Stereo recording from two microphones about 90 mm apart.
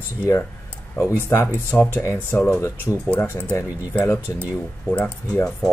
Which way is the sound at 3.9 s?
25° left (ahead or behind).